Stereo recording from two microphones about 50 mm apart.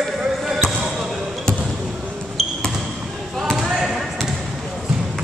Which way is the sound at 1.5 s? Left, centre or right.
Centre.